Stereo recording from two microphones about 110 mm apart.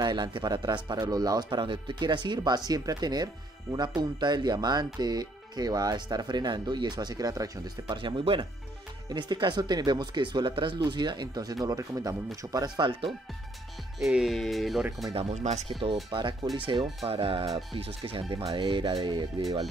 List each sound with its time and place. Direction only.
0.0 s speech: 40° right (ahead or behind)
8.0 s speech: 50° right (ahead or behind)
13.9 s speech: 5° right (ahead or behind)
15.1 s speech: 75° right (ahead or behind)
15.8 s speech: 50° right (ahead or behind)